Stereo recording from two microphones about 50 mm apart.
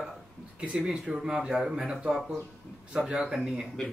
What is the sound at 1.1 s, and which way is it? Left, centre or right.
Speech, centre.